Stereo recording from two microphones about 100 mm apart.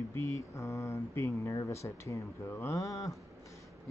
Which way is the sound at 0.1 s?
30° left (ahead or behind).